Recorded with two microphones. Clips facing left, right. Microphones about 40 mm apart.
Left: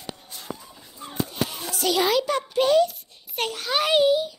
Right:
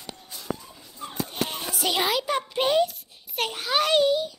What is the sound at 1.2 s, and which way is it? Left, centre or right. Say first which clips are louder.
Children playing: left 1 dB; right.